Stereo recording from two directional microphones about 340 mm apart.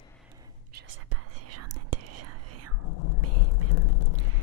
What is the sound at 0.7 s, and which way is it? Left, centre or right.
Whispering, right.